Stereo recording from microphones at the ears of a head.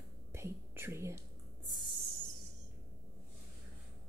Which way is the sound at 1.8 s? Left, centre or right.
Right.